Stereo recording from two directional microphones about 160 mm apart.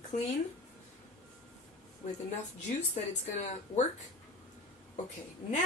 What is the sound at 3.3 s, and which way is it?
Speech, 45° left (ahead or behind).